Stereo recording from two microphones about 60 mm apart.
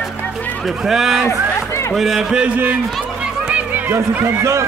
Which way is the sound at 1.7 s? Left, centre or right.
Left.